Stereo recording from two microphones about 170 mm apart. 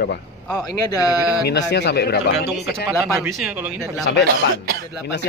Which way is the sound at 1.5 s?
80° left.